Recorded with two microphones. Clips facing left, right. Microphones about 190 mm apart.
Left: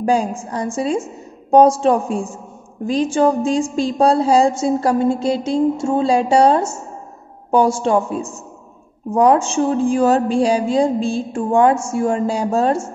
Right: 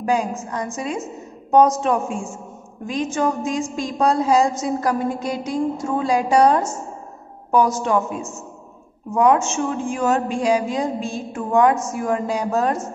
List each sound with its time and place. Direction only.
0.0 s a woman's voice: 30° left (ahead or behind)